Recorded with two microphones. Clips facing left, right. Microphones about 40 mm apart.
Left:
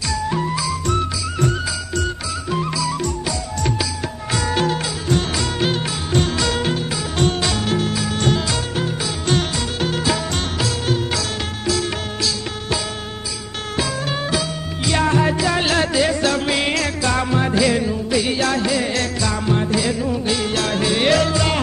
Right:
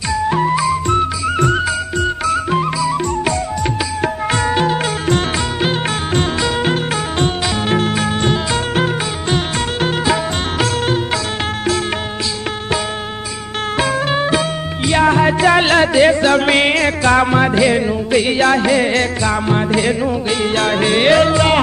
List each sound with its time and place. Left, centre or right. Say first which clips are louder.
0.1 s music: right 7 dB; right
2.5 s music: right 5 dB; right
4.0 s music: right 7 dB; right
4.5 s music: right 2 dB; right
6.6 s music: right 5 dB; right
13.7 s music: right 6 dB; right